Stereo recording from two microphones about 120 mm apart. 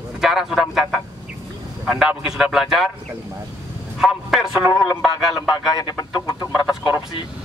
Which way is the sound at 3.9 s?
5° right (ahead or behind).